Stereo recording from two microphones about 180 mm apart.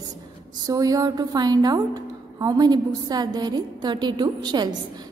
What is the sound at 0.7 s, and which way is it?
A woman's voice, 20° right (ahead or behind).